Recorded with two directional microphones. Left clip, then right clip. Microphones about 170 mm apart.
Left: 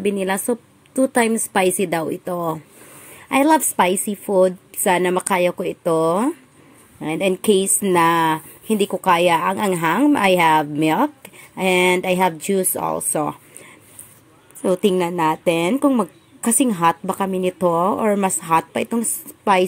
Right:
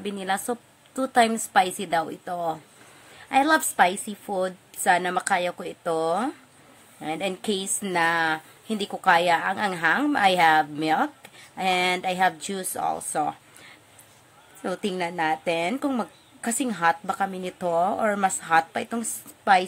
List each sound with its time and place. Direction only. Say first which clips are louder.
0.0 s a woman's voice: left 7 dB; 10° left (ahead or behind)
14.6 s a woman's voice: left 10 dB; 15° left (ahead or behind)